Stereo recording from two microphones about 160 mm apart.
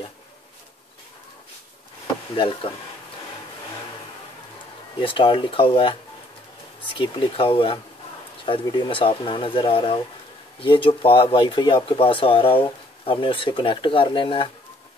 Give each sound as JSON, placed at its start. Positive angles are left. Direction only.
{"t": 2.3, "sound": "speech", "side_deg": 35}
{"t": 5.0, "sound": "speech", "side_deg": 30}
{"t": 7.0, "sound": "speech", "side_deg": 35}